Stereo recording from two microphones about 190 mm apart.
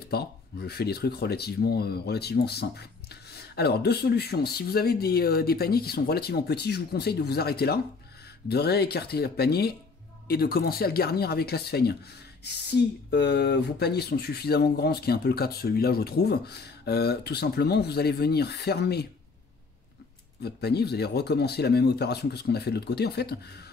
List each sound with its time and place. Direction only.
0.1 s speech: 55° left (ahead or behind)
20.4 s speech: 60° left (ahead or behind)